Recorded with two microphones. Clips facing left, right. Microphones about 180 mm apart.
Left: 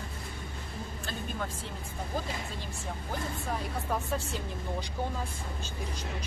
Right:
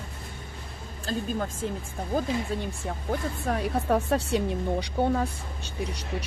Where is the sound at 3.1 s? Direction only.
70° right (ahead or behind).